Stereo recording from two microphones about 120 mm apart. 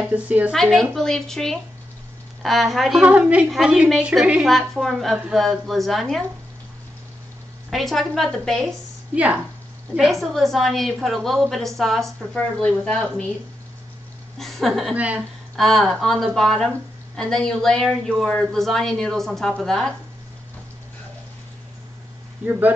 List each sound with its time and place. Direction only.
0.0 s a woman's voice: 10° right (ahead or behind)
0.6 s a woman's voice: centre (ahead or behind)
3.0 s a woman's voice: 10° right (ahead or behind)
7.7 s a woman's voice: centre (ahead or behind)
9.1 s a woman's voice: 10° right (ahead or behind)
10.2 s a woman's voice: centre (ahead or behind)
14.4 s a woman's voice: centre (ahead or behind)
15.0 s a woman's voice: 10° right (ahead or behind)
15.5 s a woman's voice: centre (ahead or behind)